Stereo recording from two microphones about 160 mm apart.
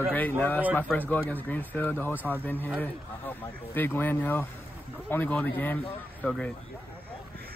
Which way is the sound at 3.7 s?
15° left (ahead or behind).